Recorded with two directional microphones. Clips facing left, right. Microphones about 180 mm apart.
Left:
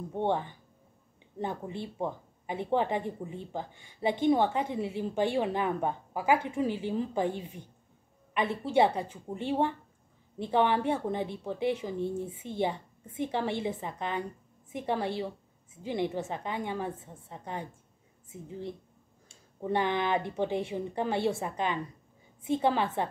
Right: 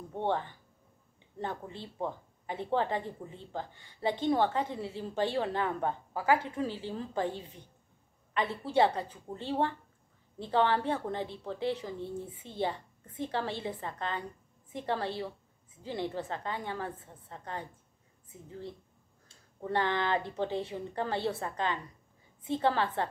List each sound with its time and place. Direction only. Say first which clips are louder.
0.1 s a woman's voice: left 2 dB; 15° left (ahead or behind)